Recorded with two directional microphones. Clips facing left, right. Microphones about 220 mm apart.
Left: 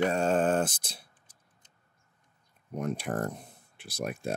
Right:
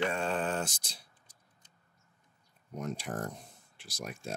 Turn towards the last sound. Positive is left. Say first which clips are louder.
# left 8 dB
turn(degrees=60)  # may be behind; listen again after turning